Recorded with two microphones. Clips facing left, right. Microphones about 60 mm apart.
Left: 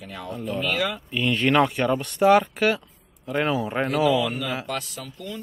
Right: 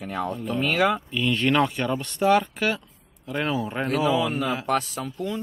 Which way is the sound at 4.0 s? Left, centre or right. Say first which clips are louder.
Left 1 dB; right.